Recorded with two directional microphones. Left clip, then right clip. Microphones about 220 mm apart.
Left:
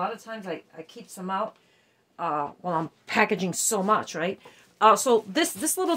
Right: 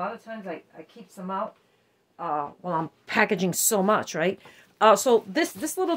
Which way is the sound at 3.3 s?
25° right (ahead or behind).